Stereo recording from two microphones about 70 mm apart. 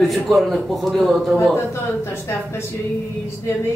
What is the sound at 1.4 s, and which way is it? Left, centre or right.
Speech, left.